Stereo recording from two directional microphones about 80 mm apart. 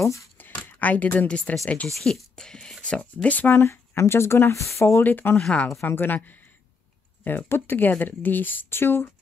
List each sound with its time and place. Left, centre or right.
0.0 s speech: left
0.4 s speech: left
2.0 s speech: centre; by 5.0 s left
5.0 s speech: left